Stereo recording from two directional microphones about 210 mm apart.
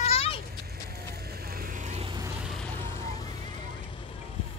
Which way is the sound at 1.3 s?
45° right (ahead or behind).